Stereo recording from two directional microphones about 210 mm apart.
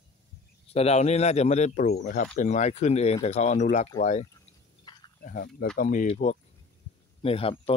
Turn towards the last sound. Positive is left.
turn(degrees=25)  # may be behind; listen again after turning